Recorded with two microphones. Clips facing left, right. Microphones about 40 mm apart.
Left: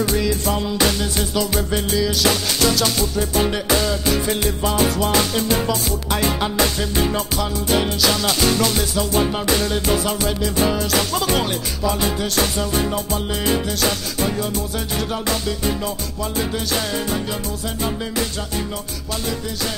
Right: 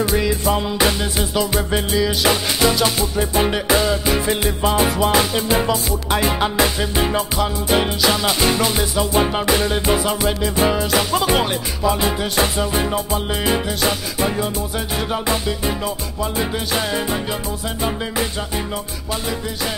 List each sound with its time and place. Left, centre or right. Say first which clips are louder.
0.0 s music: right 2 dB; centre